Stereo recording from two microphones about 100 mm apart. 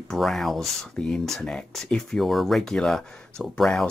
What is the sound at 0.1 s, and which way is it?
Speech, 5° left (ahead or behind).